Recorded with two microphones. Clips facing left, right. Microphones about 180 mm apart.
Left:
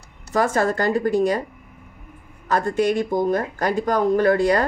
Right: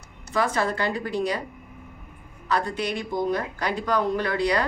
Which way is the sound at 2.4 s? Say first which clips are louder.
Left 6 dB; 45° left (ahead or behind).